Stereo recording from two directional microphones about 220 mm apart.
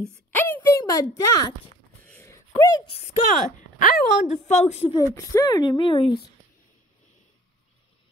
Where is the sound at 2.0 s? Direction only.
10° left (ahead or behind).